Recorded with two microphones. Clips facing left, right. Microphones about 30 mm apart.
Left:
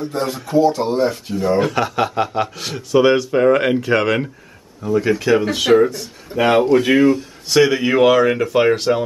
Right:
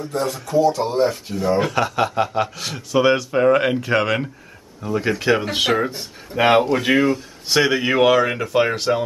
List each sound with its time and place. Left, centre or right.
0.2 s speech: centre
1.0 s speech: centre
4.8 s speech: centre
6.3 s speech: centre
6.6 s speech: centre